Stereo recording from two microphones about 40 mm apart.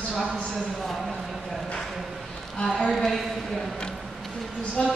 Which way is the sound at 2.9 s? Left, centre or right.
Centre.